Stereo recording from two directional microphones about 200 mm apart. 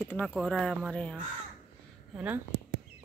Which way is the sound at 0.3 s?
Centre (ahead or behind).